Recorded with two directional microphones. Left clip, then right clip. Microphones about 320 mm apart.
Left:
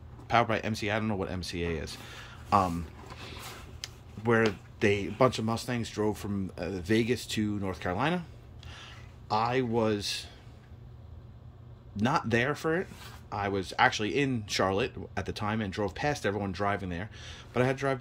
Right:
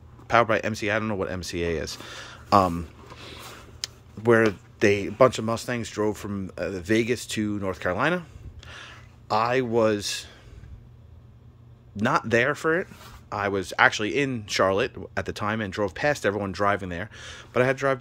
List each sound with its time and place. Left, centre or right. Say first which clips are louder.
0.3 s speech: right 6 dB; centre
12.0 s speech: right 6 dB; centre